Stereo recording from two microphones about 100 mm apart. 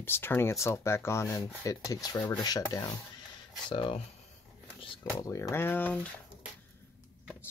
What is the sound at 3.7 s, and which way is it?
Speech, 55° left (ahead or behind).